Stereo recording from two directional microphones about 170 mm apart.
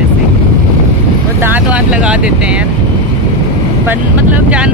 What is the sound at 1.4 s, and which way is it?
Speech, 10° right (ahead or behind).